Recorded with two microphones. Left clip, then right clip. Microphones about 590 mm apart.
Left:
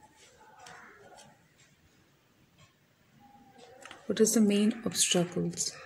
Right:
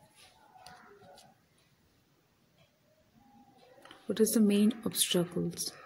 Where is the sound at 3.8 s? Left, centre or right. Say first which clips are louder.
Left 2 dB; right.